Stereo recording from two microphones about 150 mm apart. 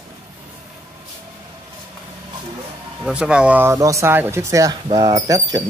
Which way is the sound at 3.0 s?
5° right (ahead or behind).